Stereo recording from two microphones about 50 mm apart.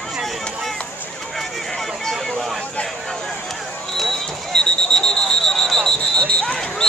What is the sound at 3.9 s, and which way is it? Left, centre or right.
Fire alarm, centre.